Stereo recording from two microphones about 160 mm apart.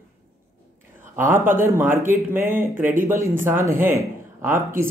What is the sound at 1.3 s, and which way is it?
Speech, 15° right (ahead or behind).